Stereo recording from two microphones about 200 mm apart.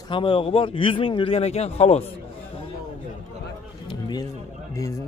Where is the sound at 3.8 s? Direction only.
20° left (ahead or behind).